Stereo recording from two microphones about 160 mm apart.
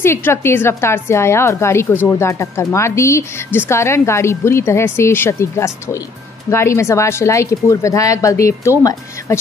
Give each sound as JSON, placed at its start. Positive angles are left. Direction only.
{"t": 0.0, "sound": "a woman's voice", "side_deg": 15}